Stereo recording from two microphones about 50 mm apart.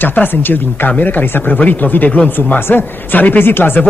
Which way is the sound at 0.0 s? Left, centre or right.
Left.